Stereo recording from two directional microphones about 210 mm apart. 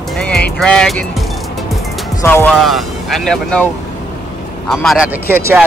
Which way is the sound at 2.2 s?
10° left (ahead or behind).